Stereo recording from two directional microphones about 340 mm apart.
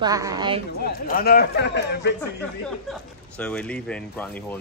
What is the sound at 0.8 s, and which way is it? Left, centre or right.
Speech, left.